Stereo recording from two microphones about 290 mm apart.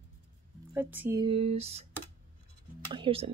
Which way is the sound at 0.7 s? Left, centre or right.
Centre.